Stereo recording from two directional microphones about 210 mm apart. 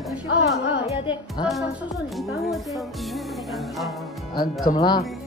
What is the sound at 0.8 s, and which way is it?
Music, 25° left (ahead or behind).